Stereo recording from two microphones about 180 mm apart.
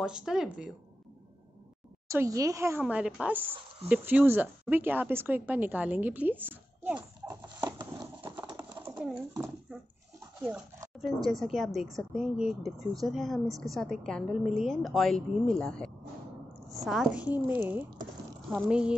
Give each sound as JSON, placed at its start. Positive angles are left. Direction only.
{"t": 0.0, "sound": "a woman's voice", "side_deg": -5}
{"t": 2.0, "sound": "speech", "side_deg": -15}
{"t": 7.0, "sound": "horse", "side_deg": -20}
{"t": 8.9, "sound": "pigeon", "side_deg": -5}
{"t": 10.4, "sound": "a woman's voice", "side_deg": -10}